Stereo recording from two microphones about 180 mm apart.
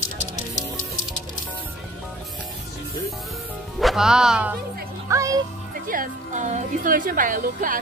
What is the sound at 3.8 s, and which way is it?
Speech, centre (ahead or behind).